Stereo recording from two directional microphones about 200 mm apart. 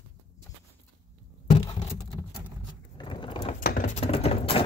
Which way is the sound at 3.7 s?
40° left (ahead or behind).